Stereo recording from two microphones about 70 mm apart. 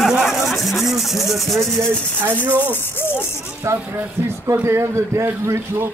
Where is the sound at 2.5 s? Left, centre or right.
Right.